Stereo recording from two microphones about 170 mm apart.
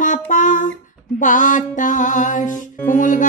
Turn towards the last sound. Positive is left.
turn(degrees=50)  # may be behind; listen again after turning